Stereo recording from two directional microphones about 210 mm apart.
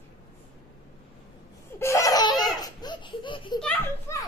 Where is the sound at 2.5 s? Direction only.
20° left (ahead or behind).